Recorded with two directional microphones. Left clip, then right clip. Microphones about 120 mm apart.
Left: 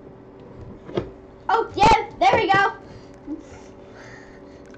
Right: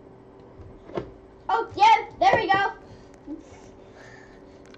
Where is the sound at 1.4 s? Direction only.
5° left (ahead or behind).